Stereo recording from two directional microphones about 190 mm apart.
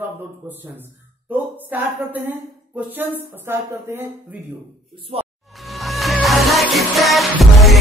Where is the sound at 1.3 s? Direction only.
10° right (ahead or behind).